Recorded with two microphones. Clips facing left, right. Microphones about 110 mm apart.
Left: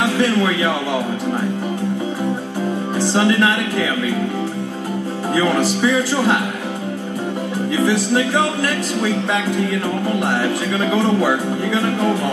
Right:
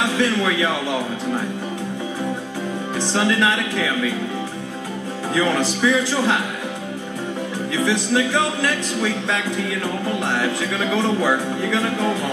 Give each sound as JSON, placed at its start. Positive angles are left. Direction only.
{"t": 3.1, "sound": "music", "side_deg": 20}
{"t": 5.4, "sound": "speech", "side_deg": 15}